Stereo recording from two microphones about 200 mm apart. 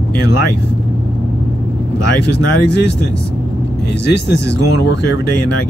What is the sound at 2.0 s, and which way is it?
Speech, 60° left (ahead or behind).